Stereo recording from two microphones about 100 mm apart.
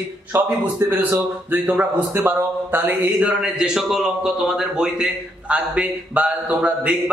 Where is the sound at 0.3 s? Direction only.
20° right (ahead or behind).